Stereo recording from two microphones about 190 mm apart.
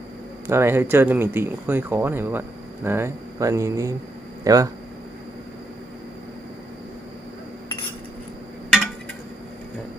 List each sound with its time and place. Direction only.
0.5 s speech: 10° right (ahead or behind)